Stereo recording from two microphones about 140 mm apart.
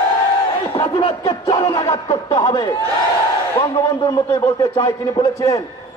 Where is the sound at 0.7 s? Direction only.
35° left (ahead or behind).